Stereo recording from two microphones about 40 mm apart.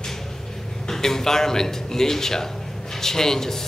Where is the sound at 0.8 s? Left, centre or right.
Centre.